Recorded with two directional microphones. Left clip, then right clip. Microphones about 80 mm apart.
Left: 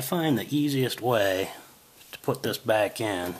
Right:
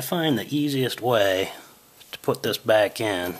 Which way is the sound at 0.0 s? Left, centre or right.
Right.